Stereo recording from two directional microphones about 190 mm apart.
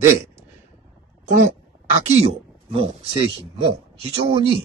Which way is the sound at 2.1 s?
30° right (ahead or behind).